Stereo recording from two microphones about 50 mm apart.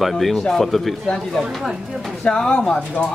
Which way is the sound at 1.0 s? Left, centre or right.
Centre.